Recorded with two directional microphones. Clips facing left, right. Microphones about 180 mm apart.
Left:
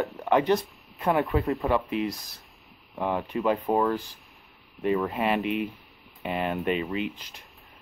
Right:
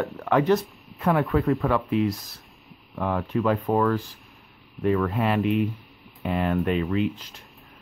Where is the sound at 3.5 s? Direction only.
Centre (ahead or behind).